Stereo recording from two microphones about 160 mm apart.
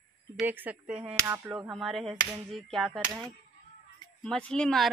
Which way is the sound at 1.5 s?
5° right (ahead or behind).